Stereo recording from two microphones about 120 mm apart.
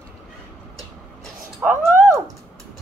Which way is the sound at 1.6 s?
25° right (ahead or behind).